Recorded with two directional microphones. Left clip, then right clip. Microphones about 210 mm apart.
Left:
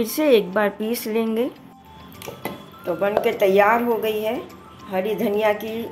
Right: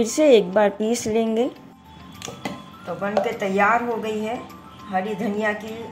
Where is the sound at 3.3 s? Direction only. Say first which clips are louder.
Left 4 dB; 45° left (ahead or behind).